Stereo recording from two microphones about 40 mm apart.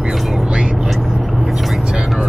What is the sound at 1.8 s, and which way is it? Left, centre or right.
Vehicle, centre.